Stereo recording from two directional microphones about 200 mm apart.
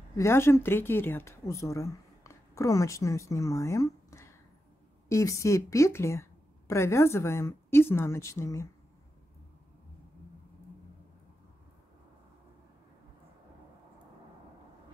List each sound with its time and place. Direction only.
0.2 s a woman's voice: 10° left (ahead or behind)